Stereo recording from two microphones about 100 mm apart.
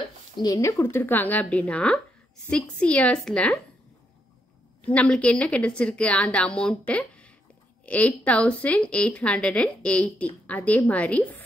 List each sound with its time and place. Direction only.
0.4 s a woman's voice: 35° left (ahead or behind); by 3.5 s 10° left (ahead or behind)
4.8 s a woman's voice: 15° left (ahead or behind)